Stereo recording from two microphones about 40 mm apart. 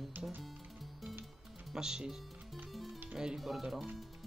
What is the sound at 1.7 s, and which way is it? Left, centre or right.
Speech, centre.